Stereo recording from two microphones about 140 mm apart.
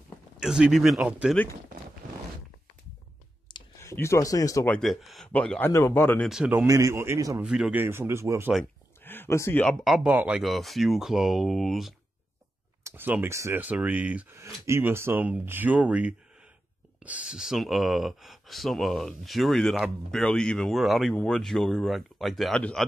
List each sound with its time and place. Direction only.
0.4 s speech: 5° right (ahead or behind)
3.5 s clicking: 35° left (ahead or behind)
3.8 s speech: 20° left (ahead or behind)
4.6 s speech: 5° left (ahead or behind)
6.2 s speech: 5° right (ahead or behind)
6.6 s a man's voice: 20° right (ahead or behind)
7.4 s speech: 5° right (ahead or behind)
7.8 s speech: 15° right (ahead or behind)
9.0 s a sound: 15° left (ahead or behind)
9.7 s speech: centre (ahead or behind)
12.8 s speech: 15° right (ahead or behind); by 22.8 s 5° left (ahead or behind)